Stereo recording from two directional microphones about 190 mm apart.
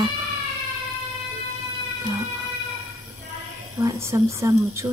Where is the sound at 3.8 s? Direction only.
15° right (ahead or behind).